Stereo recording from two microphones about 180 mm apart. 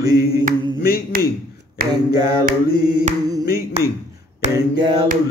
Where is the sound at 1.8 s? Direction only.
55° right (ahead or behind).